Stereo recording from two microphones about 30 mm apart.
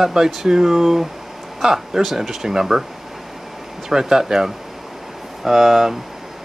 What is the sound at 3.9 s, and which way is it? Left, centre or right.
Speech, centre.